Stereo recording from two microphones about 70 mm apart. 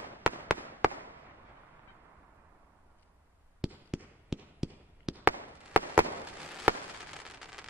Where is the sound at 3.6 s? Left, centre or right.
Centre.